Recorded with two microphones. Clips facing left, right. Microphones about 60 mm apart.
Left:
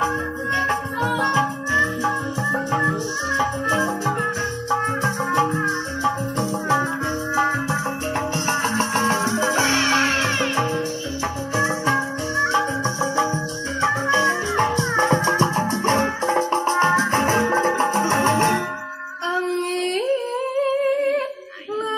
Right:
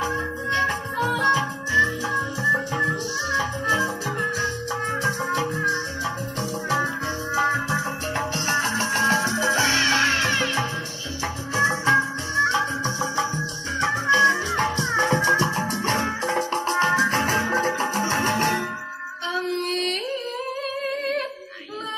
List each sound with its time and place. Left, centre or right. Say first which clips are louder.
0.7 s music: left 2 dB; left
8.5 s music: left 1 dB; left
11.5 s music: right 2 dB; centre
12.4 s music: left 1 dB; left
19.3 s a sound: left 3 dB; left